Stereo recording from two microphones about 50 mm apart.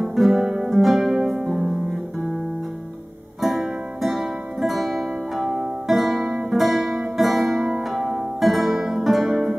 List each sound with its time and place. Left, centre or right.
0.0 s music: centre
0.6 s harp: centre
1.5 s music: centre
3.3 s music: centre